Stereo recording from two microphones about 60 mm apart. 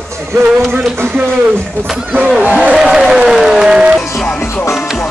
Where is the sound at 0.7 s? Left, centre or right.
Right.